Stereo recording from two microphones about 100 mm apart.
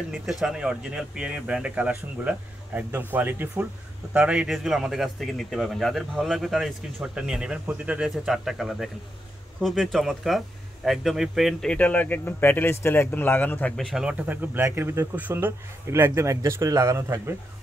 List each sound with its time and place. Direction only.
0.3 s speech: 5° right (ahead or behind)
11.7 s speech: 15° left (ahead or behind)
13.7 s speech: centre (ahead or behind)
14.1 s a man's voice: 15° right (ahead or behind)